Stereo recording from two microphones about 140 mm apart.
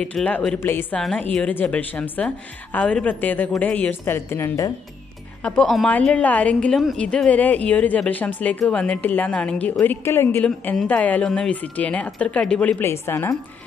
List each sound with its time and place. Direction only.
0.0 s a woman's voice: 5° left (ahead or behind)
5.4 s a woman's voice: 5° left (ahead or behind)